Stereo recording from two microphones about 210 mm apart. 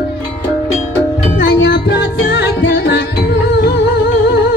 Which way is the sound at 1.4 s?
55° left (ahead or behind).